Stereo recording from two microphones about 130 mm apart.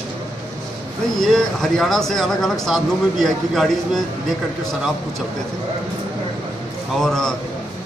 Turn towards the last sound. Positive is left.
turn(degrees=5)  # may be behind; listen again after turning